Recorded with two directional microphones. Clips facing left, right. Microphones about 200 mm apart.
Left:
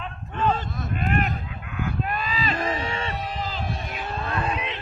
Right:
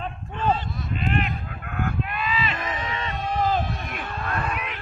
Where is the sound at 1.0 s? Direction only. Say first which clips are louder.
Left 1 dB; 45° left (ahead or behind).